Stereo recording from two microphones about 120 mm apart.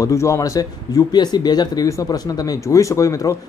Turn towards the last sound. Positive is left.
turn(degrees=25)  # may be behind; listen again after turning